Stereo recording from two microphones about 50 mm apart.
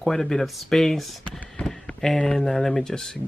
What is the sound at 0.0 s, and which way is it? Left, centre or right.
Speech, centre.